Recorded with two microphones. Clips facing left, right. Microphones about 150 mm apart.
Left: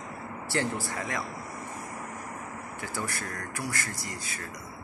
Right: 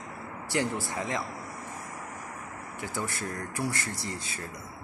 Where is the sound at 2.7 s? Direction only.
20° right (ahead or behind).